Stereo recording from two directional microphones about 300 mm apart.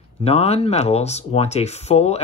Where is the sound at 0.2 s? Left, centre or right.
Centre.